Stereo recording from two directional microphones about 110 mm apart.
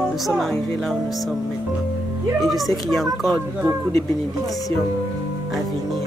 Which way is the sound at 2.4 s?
Centre (ahead or behind).